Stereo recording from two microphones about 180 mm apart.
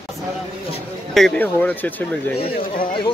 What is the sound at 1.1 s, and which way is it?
Speech, 5° left (ahead or behind).